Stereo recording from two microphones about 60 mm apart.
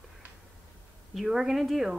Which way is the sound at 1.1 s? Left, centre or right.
Centre.